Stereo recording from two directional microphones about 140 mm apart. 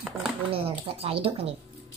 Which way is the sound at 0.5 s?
40° right (ahead or behind).